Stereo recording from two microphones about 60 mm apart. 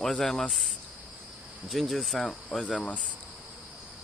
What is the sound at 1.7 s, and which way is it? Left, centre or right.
Speech, centre.